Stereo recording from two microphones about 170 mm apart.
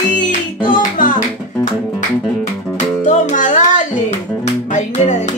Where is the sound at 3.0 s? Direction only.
45° left (ahead or behind).